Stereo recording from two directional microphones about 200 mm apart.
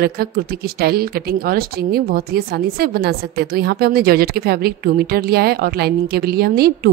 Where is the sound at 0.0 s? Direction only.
50° right (ahead or behind).